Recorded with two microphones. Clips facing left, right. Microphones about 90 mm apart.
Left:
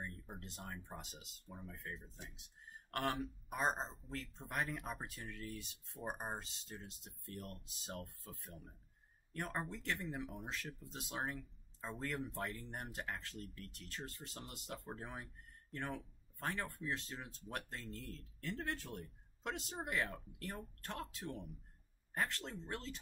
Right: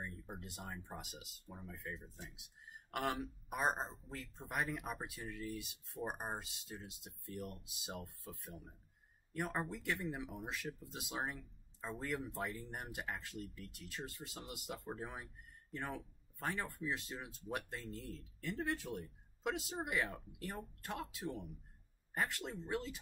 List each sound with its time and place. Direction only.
0.0 s speech: 5° right (ahead or behind)
9.3 s speech: 5° right (ahead or behind)